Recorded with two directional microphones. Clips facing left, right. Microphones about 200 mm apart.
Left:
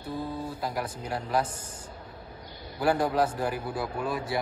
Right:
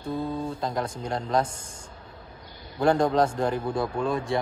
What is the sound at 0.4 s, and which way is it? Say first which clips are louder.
Mantra: right 3 dB; 10° left (ahead or behind).